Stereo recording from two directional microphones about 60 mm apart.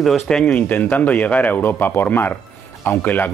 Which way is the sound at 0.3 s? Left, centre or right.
Centre.